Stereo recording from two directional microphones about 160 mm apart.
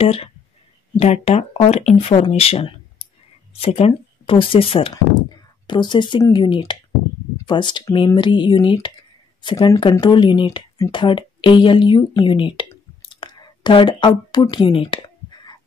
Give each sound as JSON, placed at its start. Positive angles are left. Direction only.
{"t": 0.0, "sound": "a woman's voice", "side_deg": 35}